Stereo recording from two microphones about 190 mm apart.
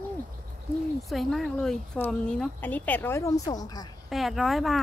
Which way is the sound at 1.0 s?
Centre (ahead or behind).